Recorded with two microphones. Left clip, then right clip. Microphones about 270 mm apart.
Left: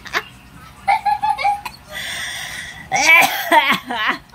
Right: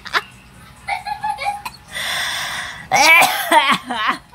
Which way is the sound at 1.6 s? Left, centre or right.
Centre.